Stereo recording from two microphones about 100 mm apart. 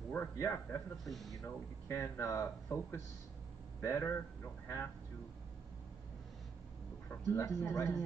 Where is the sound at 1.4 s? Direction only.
30° left (ahead or behind).